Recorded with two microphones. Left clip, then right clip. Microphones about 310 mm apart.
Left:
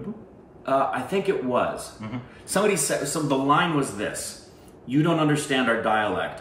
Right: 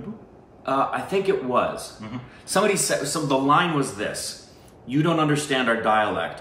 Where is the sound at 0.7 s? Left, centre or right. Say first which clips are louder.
Even; centre.